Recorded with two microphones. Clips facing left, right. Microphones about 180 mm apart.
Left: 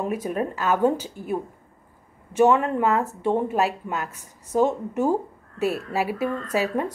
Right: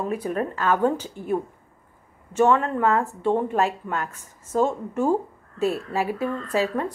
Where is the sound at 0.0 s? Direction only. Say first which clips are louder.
Even; 15° left (ahead or behind).